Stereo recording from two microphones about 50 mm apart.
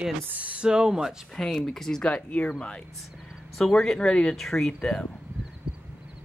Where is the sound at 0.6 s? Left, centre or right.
Centre.